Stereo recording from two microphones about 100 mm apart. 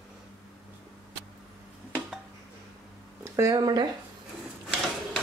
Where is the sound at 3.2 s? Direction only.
30° right (ahead or behind).